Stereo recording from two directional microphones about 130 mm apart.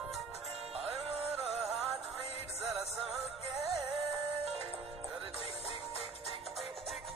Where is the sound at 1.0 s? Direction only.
50° right (ahead or behind).